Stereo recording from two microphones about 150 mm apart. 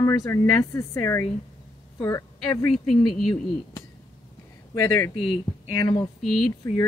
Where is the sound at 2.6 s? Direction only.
Centre (ahead or behind).